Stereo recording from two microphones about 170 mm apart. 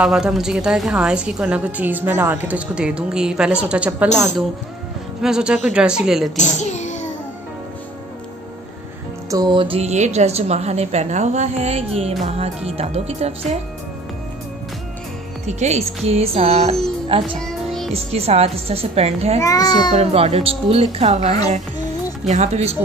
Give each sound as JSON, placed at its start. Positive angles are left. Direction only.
{"t": 0.0, "sound": "a woman's voice", "side_deg": -5}
{"t": 5.2, "sound": "a woman's voice", "side_deg": -5}
{"t": 6.3, "sound": "a child's voice", "side_deg": 40}
{"t": 9.3, "sound": "a woman's voice", "side_deg": -25}
{"t": 15.4, "sound": "a woman's voice", "side_deg": -40}
{"t": 17.4, "sound": "music", "side_deg": 0}
{"t": 17.9, "sound": "a woman's voice", "side_deg": -35}
{"t": 19.4, "sound": "a child's voice", "side_deg": 20}
{"t": 20.0, "sound": "a woman's voice", "side_deg": -40}